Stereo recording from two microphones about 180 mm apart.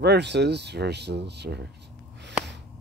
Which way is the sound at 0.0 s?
70° right (ahead or behind).